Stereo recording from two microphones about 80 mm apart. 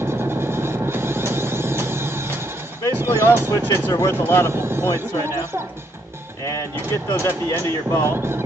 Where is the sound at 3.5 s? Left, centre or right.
Left.